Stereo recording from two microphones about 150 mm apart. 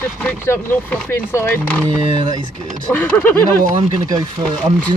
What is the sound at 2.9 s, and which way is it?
Speech, 10° left (ahead or behind).